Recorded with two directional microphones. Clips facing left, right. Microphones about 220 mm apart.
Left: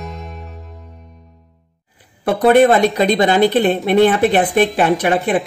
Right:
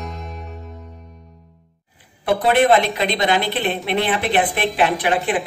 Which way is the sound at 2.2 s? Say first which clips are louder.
Left 5 dB; 45° left (ahead or behind).